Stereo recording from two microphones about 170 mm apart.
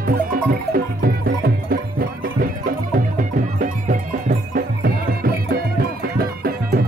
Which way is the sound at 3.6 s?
55° right (ahead or behind).